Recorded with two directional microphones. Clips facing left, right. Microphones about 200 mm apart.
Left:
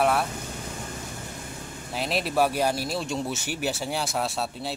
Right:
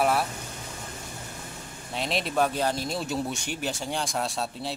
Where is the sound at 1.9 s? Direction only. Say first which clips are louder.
Left 1 dB; 5° left (ahead or behind).